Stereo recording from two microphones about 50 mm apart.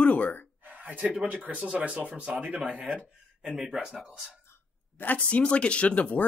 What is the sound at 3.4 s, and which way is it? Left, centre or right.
Speech, centre.